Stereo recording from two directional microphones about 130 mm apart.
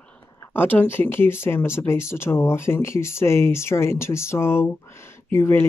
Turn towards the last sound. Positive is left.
turn(degrees=20)  # may be behind; listen again after turning